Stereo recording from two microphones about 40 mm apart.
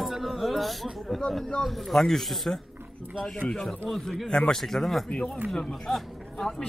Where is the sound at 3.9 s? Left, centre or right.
Centre.